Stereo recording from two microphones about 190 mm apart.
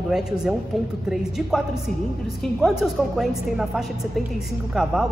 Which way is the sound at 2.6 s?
Centre (ahead or behind).